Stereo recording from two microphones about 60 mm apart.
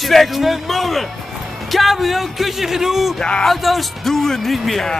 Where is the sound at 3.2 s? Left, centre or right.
Centre.